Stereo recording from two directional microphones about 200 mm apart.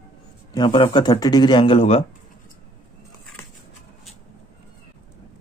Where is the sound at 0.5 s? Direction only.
25° left (ahead or behind).